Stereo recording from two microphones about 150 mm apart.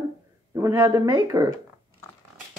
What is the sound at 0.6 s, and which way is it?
Speech, 20° right (ahead or behind).